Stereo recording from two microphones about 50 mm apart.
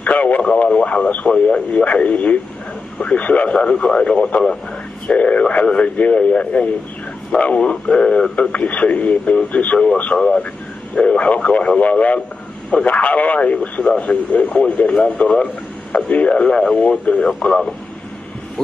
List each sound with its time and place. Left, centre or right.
0.0 s radio: left
0.7 s speech: left
8.4 s speech: left
16.4 s speech: centre
17.0 s speech: left
17.5 s speech: centre